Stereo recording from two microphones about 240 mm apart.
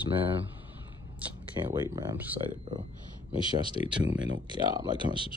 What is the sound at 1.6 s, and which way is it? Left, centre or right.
Speech, centre.